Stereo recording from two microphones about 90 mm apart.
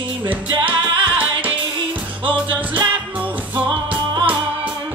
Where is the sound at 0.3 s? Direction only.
20° right (ahead or behind).